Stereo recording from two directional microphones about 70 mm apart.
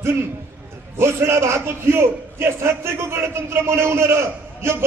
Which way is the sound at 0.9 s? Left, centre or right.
Right.